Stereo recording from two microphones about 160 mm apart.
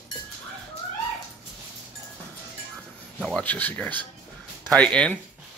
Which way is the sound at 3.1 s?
5° left (ahead or behind).